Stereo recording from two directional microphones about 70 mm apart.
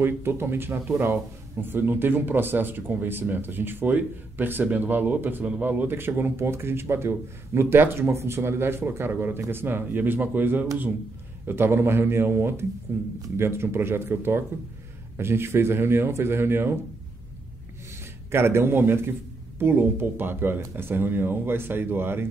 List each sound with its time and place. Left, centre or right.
0.0 s speech: right
8.1 s speech: right
18.3 s speech: right